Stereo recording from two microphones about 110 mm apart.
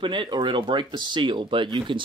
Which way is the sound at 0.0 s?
45° right (ahead or behind).